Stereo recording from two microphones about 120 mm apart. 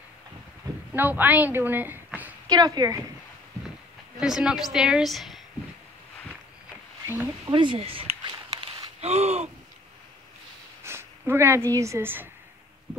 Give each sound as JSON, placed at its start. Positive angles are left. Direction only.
{"t": 0.9, "sound": "a woman's voice", "side_deg": -15}
{"t": 2.0, "sound": "a sound", "side_deg": -15}
{"t": 2.5, "sound": "a woman's voice", "side_deg": -35}
{"t": 4.2, "sound": "a woman's voice", "side_deg": -5}
{"t": 7.5, "sound": "a sound", "side_deg": -45}
{"t": 9.0, "sound": "gasp", "side_deg": -65}
{"t": 10.8, "sound": "speech", "side_deg": -20}